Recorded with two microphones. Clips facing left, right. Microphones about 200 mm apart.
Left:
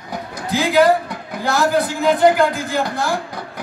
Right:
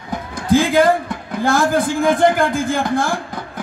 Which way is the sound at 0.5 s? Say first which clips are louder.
Right 1 dB; 50° right (ahead or behind).